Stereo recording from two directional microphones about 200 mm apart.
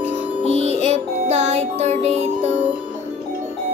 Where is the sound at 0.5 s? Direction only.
30° right (ahead or behind).